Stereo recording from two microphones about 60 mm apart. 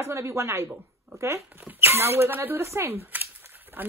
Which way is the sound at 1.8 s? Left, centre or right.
Right.